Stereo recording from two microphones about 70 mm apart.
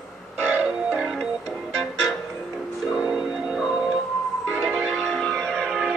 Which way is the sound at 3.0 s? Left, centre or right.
Centre.